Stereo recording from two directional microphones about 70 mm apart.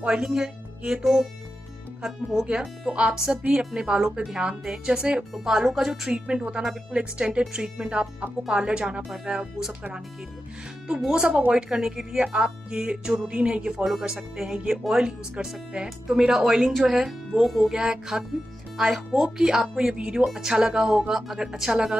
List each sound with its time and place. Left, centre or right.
0.0 s speech: centre
2.0 s speech: centre
6.2 s speech: centre
11.0 s speech: centre